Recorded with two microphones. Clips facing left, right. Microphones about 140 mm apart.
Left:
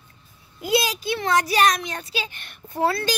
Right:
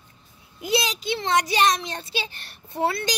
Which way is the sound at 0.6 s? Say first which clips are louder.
Left 2 dB; 20° right (ahead or behind).